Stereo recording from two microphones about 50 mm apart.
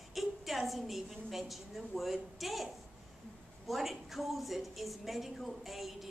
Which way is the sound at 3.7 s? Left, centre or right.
Centre.